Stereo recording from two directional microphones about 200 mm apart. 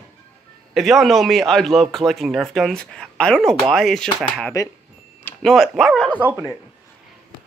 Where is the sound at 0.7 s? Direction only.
Centre (ahead or behind).